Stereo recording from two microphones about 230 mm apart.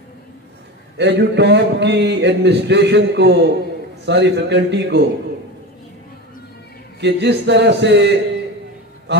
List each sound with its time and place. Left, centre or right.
0.9 s speech: right
7.0 s speech: right